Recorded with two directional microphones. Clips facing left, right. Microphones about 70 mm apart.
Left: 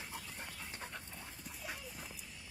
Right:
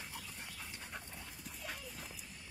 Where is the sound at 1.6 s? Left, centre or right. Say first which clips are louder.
Even; centre.